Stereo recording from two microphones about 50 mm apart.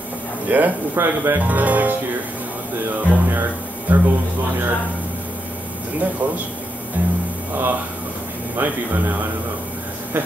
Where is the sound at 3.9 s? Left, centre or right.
Right.